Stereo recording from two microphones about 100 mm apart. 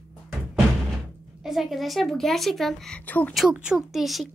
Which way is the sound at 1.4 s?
Centre (ahead or behind).